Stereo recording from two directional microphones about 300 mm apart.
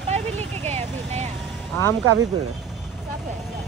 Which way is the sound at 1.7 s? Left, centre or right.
Centre.